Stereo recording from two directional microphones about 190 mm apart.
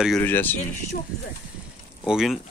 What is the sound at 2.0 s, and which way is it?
Speech, centre (ahead or behind).